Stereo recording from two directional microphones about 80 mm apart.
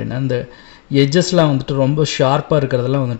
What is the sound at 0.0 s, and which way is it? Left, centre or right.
Speech, centre.